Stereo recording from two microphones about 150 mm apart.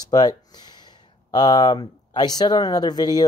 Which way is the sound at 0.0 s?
25° left (ahead or behind).